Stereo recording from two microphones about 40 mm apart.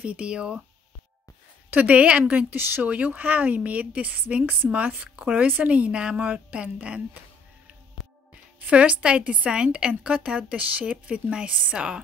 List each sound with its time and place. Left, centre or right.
0.0 s speech: right
1.7 s a woman's voice: right
2.5 s speech: right
2.9 s a woman's voice: right
5.1 s a woman's voice: right
8.6 s a woman's voice: right